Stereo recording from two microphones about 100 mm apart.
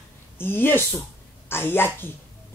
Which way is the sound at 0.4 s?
20° left (ahead or behind).